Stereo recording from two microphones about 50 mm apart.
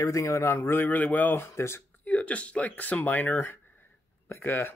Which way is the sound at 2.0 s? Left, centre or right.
Left.